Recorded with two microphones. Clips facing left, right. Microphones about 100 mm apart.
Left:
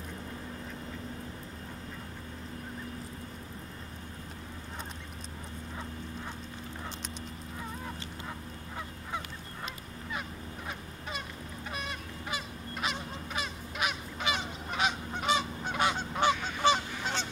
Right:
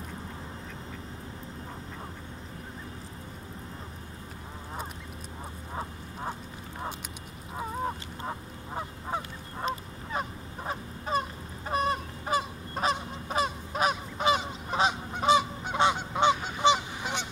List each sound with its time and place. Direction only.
7.8 s goose: 40° right (ahead or behind)
14.9 s goose: 20° right (ahead or behind)